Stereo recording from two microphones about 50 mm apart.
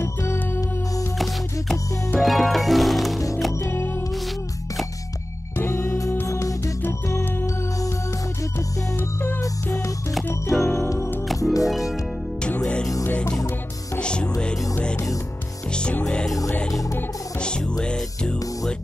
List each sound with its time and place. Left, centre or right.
0.0 s music: left
1.1 s music: centre
5.6 s music: left
6.2 s music: left
6.9 s music: left
10.6 s music: left
11.2 s music: centre
12.4 s music: left
13.9 s music: left
17.4 s music: centre